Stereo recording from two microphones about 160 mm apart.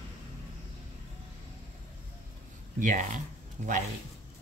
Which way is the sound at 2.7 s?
55° right (ahead or behind).